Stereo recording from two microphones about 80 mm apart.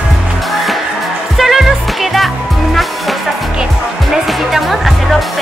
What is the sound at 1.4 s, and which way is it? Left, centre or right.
Music, centre.